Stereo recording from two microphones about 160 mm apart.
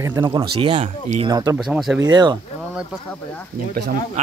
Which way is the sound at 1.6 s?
Centre (ahead or behind).